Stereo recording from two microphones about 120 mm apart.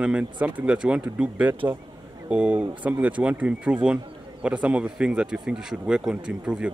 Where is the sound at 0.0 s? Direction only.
10° right (ahead or behind).